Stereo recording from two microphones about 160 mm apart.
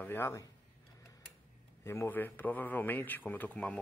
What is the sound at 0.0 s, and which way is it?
Speech, 15° left (ahead or behind).